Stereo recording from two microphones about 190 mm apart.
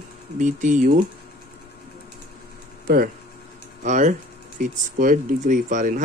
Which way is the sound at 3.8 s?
40° right (ahead or behind).